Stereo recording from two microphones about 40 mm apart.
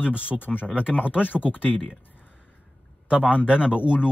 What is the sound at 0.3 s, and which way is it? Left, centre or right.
Speech, left.